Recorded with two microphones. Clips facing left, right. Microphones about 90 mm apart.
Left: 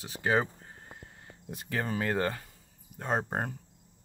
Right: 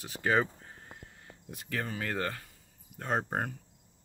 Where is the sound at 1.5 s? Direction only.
25° left (ahead or behind).